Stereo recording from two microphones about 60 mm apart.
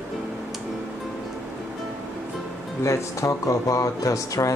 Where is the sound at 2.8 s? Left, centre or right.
Left.